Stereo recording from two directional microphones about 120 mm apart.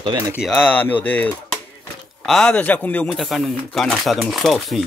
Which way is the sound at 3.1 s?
Centre (ahead or behind).